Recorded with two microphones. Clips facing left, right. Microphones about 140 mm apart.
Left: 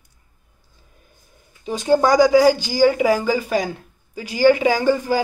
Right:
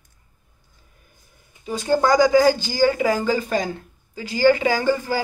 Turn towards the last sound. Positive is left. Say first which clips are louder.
# left 3 dB
turn(degrees=15)  # may be behind; listen again after turning